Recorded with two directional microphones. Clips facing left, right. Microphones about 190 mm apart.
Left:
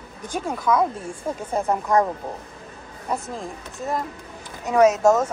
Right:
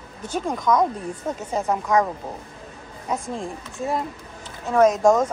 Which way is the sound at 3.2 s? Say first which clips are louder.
Right 2 dB; centre (ahead or behind).